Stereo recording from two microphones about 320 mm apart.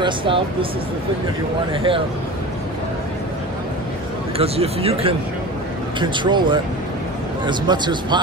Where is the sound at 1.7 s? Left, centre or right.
Centre.